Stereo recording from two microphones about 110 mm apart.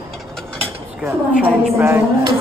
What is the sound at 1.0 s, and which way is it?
A woman's voice, 15° right (ahead or behind).